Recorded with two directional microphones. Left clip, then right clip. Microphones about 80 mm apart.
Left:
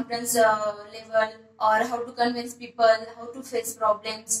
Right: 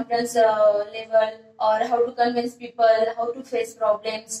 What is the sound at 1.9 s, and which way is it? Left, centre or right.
Speech, right.